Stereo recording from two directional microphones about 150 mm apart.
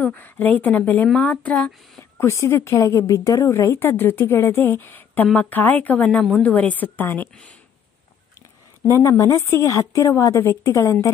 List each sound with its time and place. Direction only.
0.0 s a woman's voice: 10° left (ahead or behind)
8.4 s a sound: 20° left (ahead or behind)
9.2 s a woman's voice: 20° left (ahead or behind)